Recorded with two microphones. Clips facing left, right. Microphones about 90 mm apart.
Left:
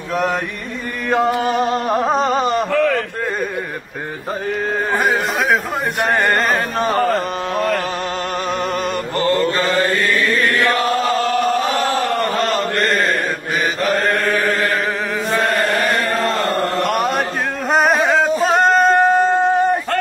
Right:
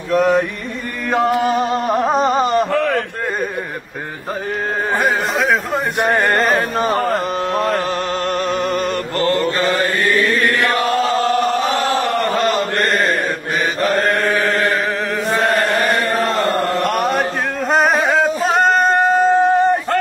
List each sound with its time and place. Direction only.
1.6 s music: 25° right (ahead or behind)
2.0 s a sound: 10° right (ahead or behind)
2.7 s a sound: 20° right (ahead or behind)
4.9 s music: centre (ahead or behind)
7.1 s mantra: centre (ahead or behind)
8.5 s music: centre (ahead or behind)
9.6 s chant: 25° right (ahead or behind)
12.8 s mantra: centre (ahead or behind)
13.8 s chant: centre (ahead or behind)
15.3 s chant: 25° right (ahead or behind)
16.6 s chant: 25° left (ahead or behind)
16.9 s chant: centre (ahead or behind)
17.6 s male singing: centre (ahead or behind)